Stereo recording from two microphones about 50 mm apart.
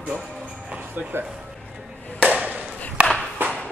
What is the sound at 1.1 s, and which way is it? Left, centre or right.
Speech, right.